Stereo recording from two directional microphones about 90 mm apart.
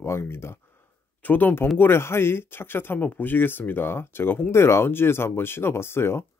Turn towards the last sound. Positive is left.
turn(degrees=25)  # may be behind; listen again after turning